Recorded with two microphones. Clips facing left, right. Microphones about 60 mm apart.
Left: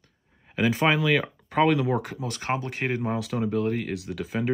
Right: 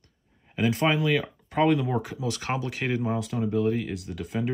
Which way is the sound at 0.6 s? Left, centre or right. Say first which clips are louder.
Left 1 dB; left.